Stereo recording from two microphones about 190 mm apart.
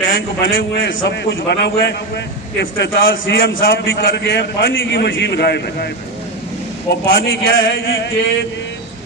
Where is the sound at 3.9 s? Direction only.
70° left (ahead or behind).